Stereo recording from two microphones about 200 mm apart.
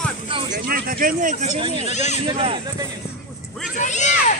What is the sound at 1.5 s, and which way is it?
Speech, 25° right (ahead or behind).